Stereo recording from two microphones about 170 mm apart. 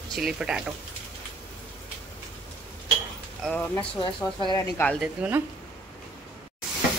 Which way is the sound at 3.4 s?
5° left (ahead or behind).